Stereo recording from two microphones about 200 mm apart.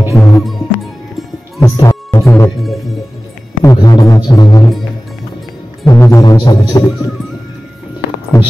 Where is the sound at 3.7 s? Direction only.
20° left (ahead or behind).